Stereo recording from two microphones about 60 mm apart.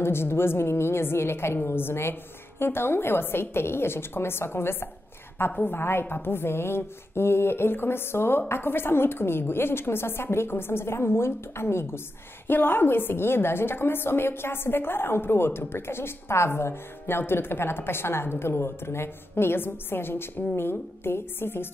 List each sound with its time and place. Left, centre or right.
0.0 s a woman's voice: left